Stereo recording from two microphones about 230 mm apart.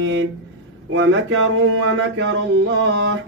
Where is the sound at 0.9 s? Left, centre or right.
Right.